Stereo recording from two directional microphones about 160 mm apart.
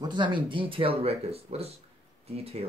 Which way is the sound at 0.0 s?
30° right (ahead or behind).